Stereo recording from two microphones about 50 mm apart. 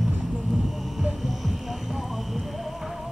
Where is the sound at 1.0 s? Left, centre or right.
Centre.